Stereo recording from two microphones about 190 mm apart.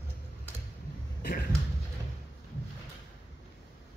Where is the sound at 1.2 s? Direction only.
50° left (ahead or behind).